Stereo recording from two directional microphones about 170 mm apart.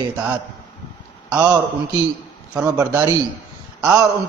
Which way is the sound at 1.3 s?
10° right (ahead or behind).